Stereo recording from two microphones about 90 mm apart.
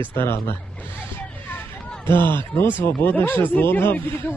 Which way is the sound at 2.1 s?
25° left (ahead or behind).